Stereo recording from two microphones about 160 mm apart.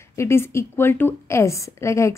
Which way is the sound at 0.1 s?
15° left (ahead or behind).